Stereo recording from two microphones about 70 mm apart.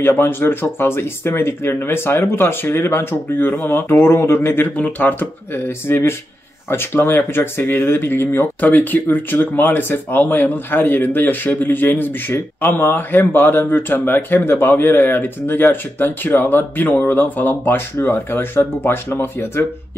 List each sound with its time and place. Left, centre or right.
0.0 s speech: left